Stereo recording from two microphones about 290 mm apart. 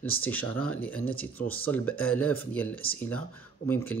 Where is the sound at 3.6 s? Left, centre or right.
Left.